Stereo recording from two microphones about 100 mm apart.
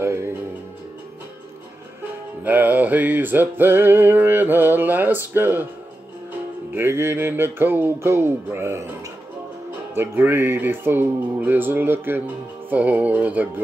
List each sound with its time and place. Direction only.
0.0 s music: 25° right (ahead or behind)
2.4 s music: 15° right (ahead or behind)
6.7 s music: 25° right (ahead or behind)
9.9 s music: 20° right (ahead or behind)